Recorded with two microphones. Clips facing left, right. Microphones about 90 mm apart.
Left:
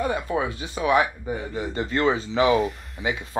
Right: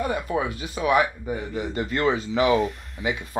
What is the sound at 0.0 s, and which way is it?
Speech, 30° left (ahead or behind).